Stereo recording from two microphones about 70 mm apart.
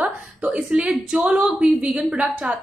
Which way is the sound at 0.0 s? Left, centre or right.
Centre.